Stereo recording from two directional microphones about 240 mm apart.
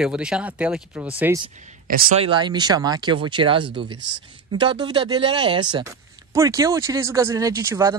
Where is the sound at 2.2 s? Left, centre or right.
Centre.